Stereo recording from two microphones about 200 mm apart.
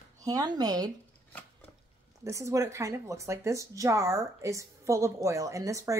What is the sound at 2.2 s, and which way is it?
Speech, 15° right (ahead or behind).